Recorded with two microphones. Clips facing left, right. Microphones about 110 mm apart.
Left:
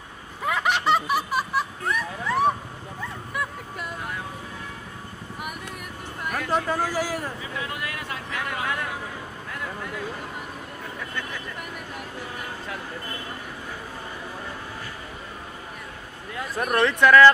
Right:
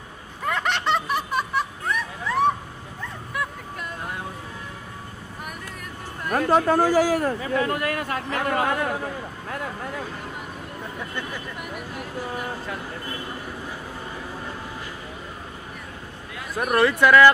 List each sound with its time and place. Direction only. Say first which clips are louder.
0.5 s snicker: left 1 dB; 5° left (ahead or behind)
6.5 s speech: right 7 dB; 55° right (ahead or behind)
16.5 s speech: right 2 dB; 5° right (ahead or behind)